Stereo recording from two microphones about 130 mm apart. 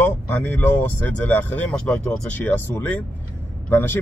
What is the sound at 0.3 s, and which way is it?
Speech, 15° left (ahead or behind).